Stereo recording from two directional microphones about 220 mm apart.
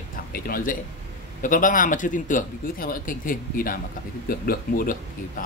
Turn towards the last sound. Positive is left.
turn(degrees=40)  # may be behind; listen again after turning